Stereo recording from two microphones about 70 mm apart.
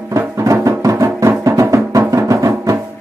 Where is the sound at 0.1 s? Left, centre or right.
Right.